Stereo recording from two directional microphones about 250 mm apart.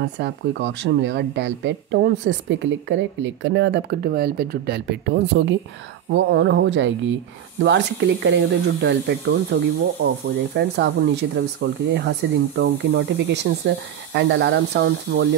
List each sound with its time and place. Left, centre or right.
0.0 s speech: right